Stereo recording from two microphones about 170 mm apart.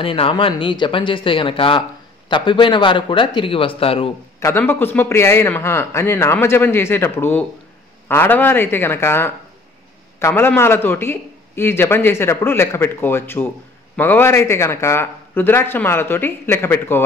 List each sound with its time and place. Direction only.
0.0 s speech: 30° left (ahead or behind)
4.4 s a man's voice: 15° left (ahead or behind)